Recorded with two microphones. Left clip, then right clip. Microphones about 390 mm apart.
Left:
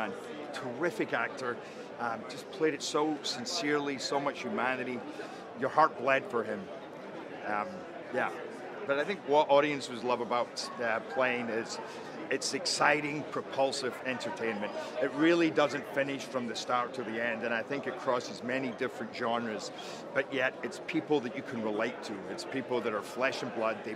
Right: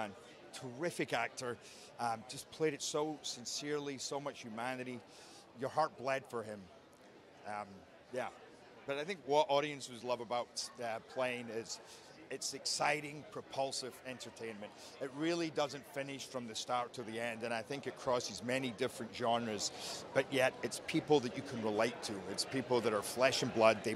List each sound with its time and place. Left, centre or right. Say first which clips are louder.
0.7 s a man's voice: left 5 dB; right
2.6 s speech: left 6 dB; right
5.6 s speech: left 9 dB; right
8.1 s speech: left 9 dB; right
8.8 s a man's voice: left 8 dB; right
12.3 s speech: left 9 dB; right
12.8 s a man's voice: left 8 dB; right
13.6 s a man's voice: left 8 dB; right